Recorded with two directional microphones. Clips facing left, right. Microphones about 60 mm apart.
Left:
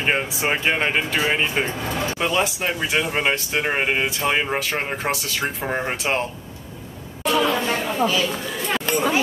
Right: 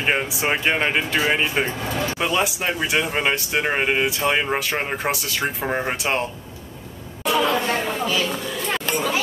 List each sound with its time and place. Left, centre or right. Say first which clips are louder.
0.0 s speech: even; centre
1.9 s speech: even; left
2.1 s speech: left 1 dB; centre
7.2 s chatter: even; centre
7.6 s a sound: right 1 dB; centre
8.0 s speech: left 3 dB; centre
8.9 s speech: left 4 dB; left